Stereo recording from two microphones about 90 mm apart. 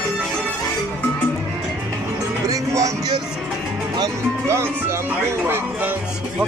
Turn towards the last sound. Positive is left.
turn(degrees=-25)  # may be behind; listen again after turning